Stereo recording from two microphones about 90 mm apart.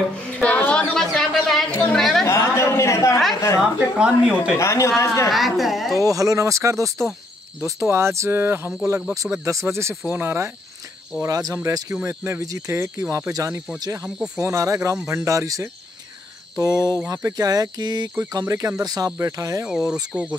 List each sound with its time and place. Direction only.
0.3 s music: 15° left (ahead or behind)
0.9 s music: 5° left (ahead or behind)
1.7 s chatter: 20° left (ahead or behind)
2.0 s chatter: centre (ahead or behind)
2.2 s a sound: 30° left (ahead or behind)
4.0 s speech: 10° right (ahead or behind)
4.6 s a man's voice: 35° left (ahead or behind)
5.3 s a woman's voice: centre (ahead or behind)
5.9 s speech: 40° right (ahead or behind)
11.2 s speech: 40° right (ahead or behind)
14.0 s speech: 10° right (ahead or behind)
14.4 s speech: 35° right (ahead or behind)
19.7 s speech: 5° right (ahead or behind)